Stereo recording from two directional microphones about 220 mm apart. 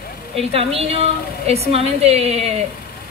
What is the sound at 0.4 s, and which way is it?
Speech, 25° right (ahead or behind).